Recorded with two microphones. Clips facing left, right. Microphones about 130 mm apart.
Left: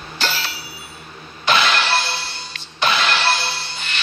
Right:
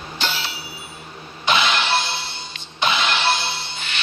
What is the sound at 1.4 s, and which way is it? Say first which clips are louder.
Music: left 2 dB; 20° right (ahead or behind).